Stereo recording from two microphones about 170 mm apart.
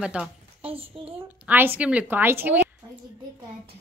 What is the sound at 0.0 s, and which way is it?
Speech, 5° right (ahead or behind).